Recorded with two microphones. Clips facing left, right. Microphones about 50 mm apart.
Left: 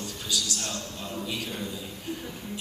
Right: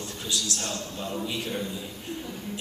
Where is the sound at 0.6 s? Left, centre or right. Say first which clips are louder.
Right 2 dB; centre.